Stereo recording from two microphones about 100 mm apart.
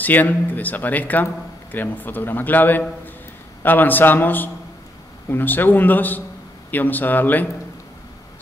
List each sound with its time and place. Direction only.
0.0 s a man's voice: 15° left (ahead or behind)